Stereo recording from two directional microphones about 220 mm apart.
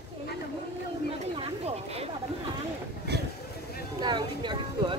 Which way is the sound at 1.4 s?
25° right (ahead or behind).